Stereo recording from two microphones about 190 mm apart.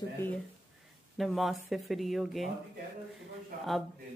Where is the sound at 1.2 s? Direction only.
Centre (ahead or behind).